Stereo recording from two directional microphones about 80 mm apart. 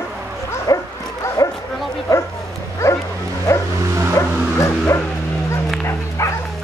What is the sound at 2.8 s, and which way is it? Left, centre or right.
Bow-wow, left.